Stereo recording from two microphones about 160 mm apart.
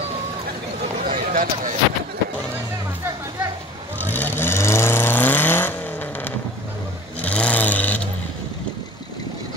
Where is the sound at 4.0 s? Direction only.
10° left (ahead or behind).